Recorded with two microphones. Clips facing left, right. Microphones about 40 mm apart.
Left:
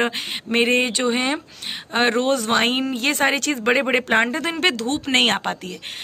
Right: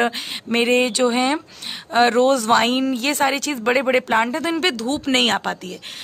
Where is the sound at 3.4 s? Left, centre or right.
Left.